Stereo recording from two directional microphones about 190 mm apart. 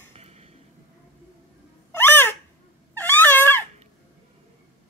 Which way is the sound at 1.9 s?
10° left (ahead or behind).